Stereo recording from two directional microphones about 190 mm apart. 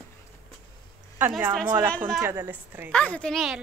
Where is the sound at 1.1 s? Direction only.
10° right (ahead or behind).